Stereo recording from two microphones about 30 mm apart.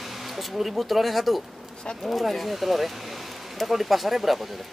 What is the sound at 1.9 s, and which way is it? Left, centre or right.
Speech, centre.